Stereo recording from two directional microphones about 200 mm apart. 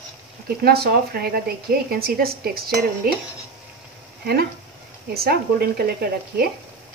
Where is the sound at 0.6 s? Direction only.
50° right (ahead or behind).